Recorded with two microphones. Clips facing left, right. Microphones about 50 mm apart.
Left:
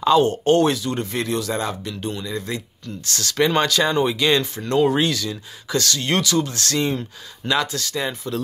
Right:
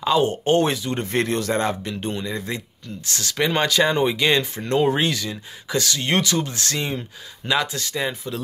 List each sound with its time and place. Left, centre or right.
0.0 s speech: centre
0.3 s speech: right
1.0 s speech: right; by 8.4 s centre